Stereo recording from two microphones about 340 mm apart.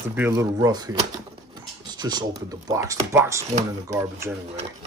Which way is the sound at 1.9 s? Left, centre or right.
Centre.